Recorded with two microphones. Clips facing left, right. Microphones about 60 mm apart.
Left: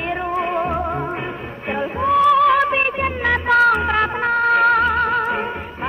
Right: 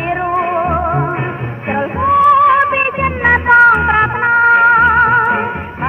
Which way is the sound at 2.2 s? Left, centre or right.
Right.